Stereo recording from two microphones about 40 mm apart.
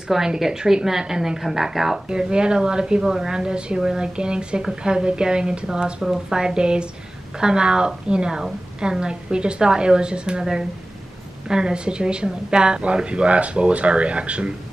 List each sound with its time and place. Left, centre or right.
0.1 s a woman's voice: centre
2.0 s a woman's voice: right
11.4 s a woman's voice: centre